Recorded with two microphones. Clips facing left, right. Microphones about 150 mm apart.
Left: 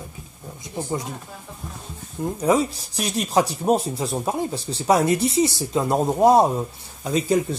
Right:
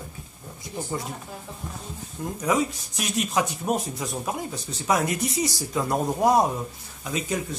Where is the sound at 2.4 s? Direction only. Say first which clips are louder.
Left 4 dB; 30° left (ahead or behind).